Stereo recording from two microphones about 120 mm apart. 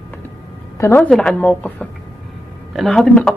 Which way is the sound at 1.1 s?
5° left (ahead or behind).